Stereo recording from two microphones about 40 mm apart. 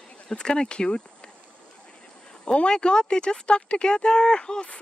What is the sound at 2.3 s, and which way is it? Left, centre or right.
Speech, left.